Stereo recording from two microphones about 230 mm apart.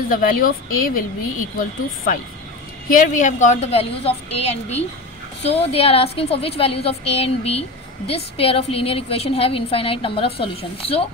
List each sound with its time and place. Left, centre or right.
0.1 s a woman's voice: left
2.9 s a woman's voice: left